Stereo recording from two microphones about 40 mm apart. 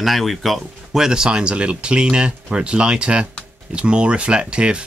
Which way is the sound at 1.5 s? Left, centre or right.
Right.